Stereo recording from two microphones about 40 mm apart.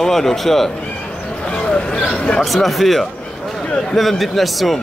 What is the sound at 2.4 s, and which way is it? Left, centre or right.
A man's voice, centre.